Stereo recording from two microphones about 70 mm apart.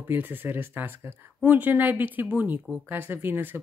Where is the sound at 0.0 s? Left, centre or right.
Right.